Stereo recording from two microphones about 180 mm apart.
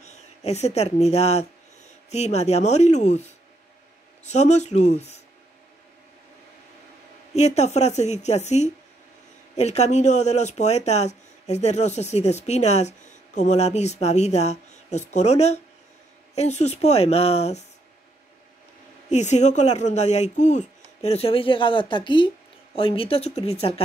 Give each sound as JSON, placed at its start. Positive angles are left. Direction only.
{"t": 0.0, "sound": "speech", "side_deg": 40}
{"t": 7.3, "sound": "speech", "side_deg": 40}
{"t": 19.0, "sound": "speech", "side_deg": 40}